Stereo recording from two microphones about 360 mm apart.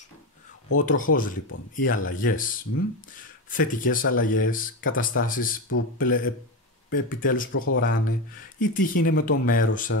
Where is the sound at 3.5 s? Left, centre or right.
Left.